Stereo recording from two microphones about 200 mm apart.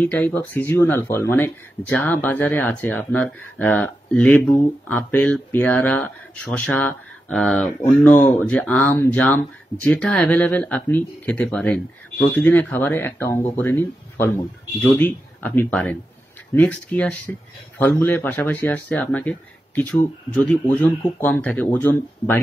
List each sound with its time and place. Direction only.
0.0 s speech: 10° left (ahead or behind)